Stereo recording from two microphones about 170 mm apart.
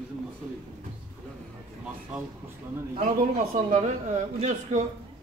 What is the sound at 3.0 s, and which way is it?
A man's voice, 50° right (ahead or behind).